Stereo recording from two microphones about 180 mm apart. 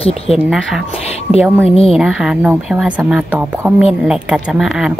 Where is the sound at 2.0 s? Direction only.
5° right (ahead or behind).